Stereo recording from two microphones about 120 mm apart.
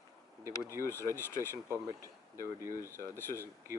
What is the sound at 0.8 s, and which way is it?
Speech, 20° left (ahead or behind).